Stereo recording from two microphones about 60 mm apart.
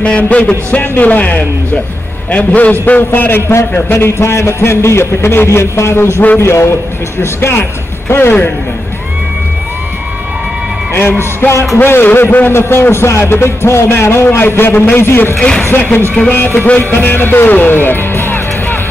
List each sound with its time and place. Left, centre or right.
0.2 s a man's voice: left
7.2 s a man's voice: left
10.9 s music: left
11.8 s a man's voice: left